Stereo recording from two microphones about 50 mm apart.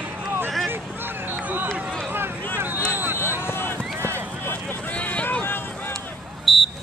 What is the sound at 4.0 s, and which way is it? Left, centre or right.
Run, right.